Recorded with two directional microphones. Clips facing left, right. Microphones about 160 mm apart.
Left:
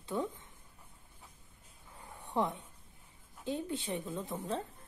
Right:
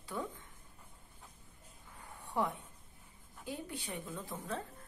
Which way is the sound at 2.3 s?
20° left (ahead or behind).